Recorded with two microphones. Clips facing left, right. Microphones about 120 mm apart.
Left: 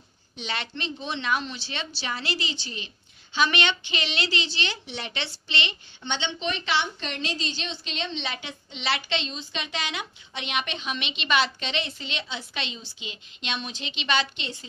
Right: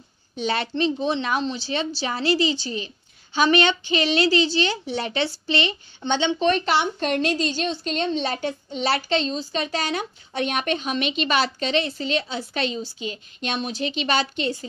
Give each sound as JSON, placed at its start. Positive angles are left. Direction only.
{"t": 0.4, "sound": "a woman's voice", "side_deg": -40}